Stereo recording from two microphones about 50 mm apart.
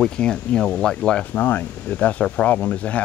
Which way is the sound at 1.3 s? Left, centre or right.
Left.